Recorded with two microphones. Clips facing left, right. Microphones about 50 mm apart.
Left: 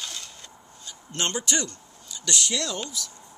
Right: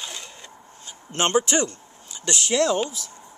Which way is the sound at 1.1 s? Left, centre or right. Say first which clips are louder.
Right 7 dB; right.